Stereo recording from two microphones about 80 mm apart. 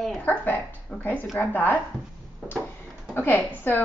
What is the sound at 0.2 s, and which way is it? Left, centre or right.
A woman's voice, left.